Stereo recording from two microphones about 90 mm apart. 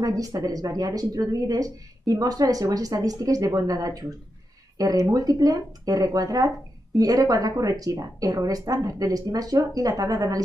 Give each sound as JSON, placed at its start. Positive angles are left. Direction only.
{"t": 0.0, "sound": "speech", "side_deg": -40}